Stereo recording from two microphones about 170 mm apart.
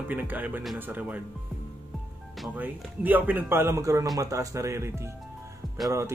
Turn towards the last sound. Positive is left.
turn(degrees=-15)  # may be behind; listen again after turning